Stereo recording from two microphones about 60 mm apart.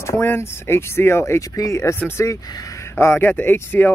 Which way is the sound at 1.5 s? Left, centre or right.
Left.